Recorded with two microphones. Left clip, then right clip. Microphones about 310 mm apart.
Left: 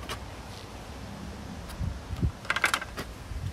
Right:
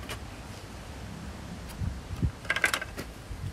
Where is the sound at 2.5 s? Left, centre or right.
Centre.